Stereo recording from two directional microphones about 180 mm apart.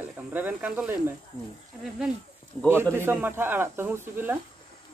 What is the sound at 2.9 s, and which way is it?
Speech, 10° right (ahead or behind).